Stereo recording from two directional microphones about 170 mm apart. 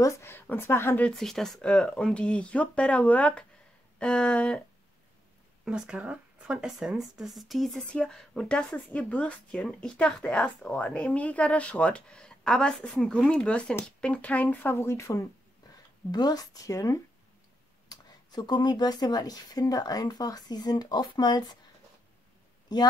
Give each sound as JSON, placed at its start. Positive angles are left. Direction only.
{"t": 0.0, "sound": "speech", "side_deg": 15}
{"t": 5.7, "sound": "speech", "side_deg": -5}